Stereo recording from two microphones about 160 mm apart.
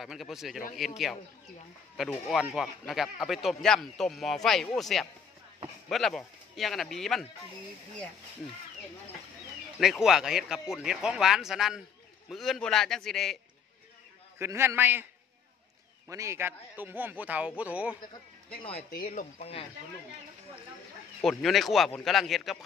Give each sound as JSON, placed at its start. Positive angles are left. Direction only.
{"t": 0.0, "sound": "speech", "side_deg": 0}
{"t": 9.8, "sound": "speech", "side_deg": 0}
{"t": 14.4, "sound": "speech", "side_deg": -15}
{"t": 16.1, "sound": "speech", "side_deg": -20}
{"t": 18.6, "sound": "speech", "side_deg": 35}
{"t": 18.9, "sound": "speech", "side_deg": 60}
{"t": 21.2, "sound": "speech", "side_deg": 0}